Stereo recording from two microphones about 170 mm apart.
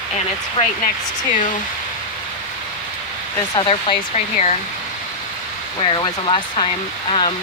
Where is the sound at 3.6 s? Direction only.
30° left (ahead or behind).